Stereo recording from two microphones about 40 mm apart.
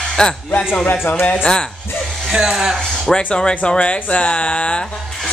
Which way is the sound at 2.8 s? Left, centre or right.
Centre.